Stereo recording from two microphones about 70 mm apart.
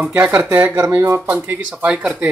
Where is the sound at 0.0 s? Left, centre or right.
Right.